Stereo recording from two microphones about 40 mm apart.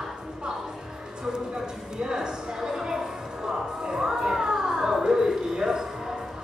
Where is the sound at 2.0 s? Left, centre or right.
Centre.